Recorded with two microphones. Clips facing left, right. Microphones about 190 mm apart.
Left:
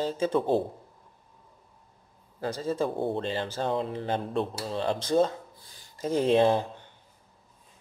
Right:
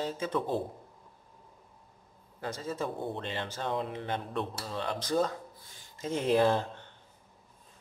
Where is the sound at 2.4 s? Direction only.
30° left (ahead or behind); by 6.9 s 15° left (ahead or behind).